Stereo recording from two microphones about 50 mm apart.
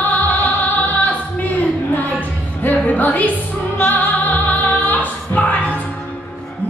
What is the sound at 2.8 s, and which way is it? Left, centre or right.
Music, left.